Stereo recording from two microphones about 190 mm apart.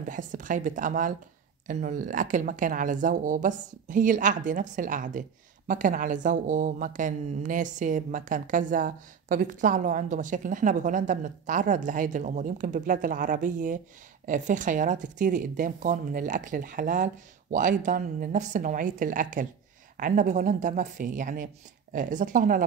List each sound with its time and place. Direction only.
0.1 s a woman's voice: 45° right (ahead or behind)